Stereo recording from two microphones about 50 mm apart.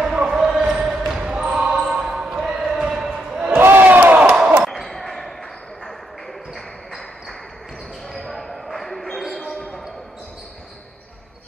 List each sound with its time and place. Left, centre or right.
0.0 s basketball bounce: centre
2.4 s a sound: centre
3.5 s crowd: right
3.8 s crowd: right
4.6 s basketball bounce: centre
6.5 s a sound: centre
8.2 s basketball bounce: centre